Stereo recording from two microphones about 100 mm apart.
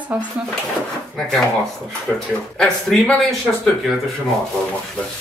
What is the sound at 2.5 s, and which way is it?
Speech, 10° left (ahead or behind).